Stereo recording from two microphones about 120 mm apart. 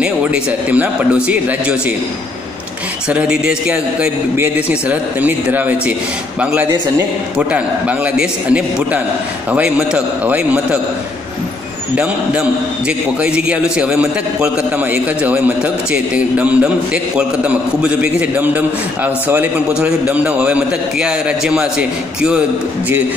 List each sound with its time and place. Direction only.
0.0 s a man's voice: 10° right (ahead or behind)
3.1 s a man's voice: 10° right (ahead or behind)
12.0 s a man's voice: 5° right (ahead or behind)